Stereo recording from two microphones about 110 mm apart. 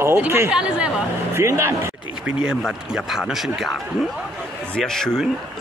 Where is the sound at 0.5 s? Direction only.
10° right (ahead or behind).